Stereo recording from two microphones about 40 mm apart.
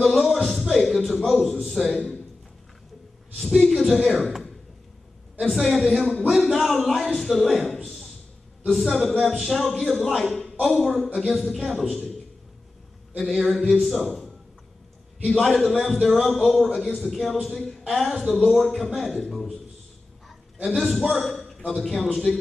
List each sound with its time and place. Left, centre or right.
0.0 s music: centre
1.3 s speech: centre
3.3 s speech: centre
9.4 s speech: centre
13.4 s speech: centre
15.7 s speech: centre
16.3 s speech: centre
20.6 s a man's voice: centre